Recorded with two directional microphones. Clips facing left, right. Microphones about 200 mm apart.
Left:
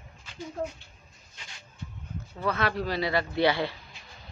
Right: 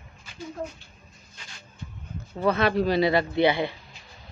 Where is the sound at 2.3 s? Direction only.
25° right (ahead or behind).